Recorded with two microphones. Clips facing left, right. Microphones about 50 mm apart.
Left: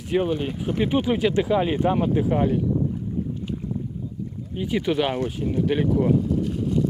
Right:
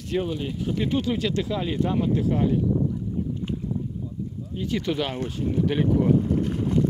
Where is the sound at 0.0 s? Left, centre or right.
Centre.